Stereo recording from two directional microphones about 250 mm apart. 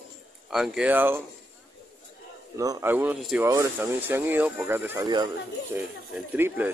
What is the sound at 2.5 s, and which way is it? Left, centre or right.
Speech, centre.